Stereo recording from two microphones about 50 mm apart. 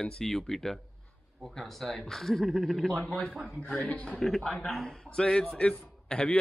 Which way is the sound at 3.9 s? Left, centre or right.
Left.